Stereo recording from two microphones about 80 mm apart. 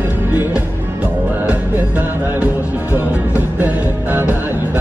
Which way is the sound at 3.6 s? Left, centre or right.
Right.